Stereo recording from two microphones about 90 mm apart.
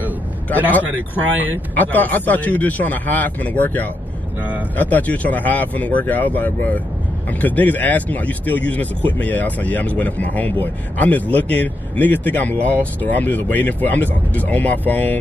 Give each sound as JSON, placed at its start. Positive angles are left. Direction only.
{"t": 0.7, "sound": "speech", "side_deg": 20}